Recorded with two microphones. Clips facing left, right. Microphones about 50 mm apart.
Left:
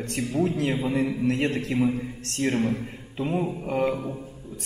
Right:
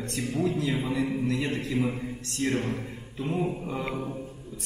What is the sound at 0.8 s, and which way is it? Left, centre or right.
Speech, left.